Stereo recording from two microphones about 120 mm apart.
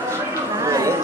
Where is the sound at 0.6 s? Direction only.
25° right (ahead or behind).